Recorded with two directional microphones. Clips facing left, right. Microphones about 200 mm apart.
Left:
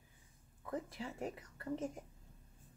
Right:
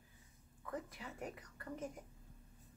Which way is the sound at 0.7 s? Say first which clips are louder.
Left 4 dB; 30° left (ahead or behind).